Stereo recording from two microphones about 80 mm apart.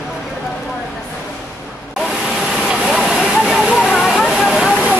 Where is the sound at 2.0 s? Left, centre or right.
Centre.